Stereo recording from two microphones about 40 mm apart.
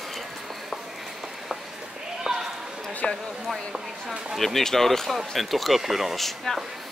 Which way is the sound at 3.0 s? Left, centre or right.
Left.